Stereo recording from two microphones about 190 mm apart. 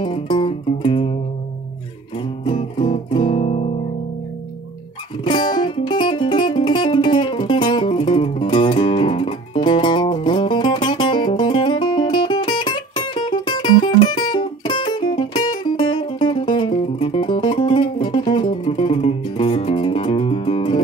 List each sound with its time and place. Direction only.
0.0 s music: 25° left (ahead or behind)
2.4 s music: 25° left (ahead or behind)
5.2 s music: 25° left (ahead or behind)